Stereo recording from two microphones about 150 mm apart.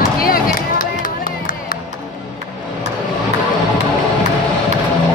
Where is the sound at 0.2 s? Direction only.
70° left (ahead or behind).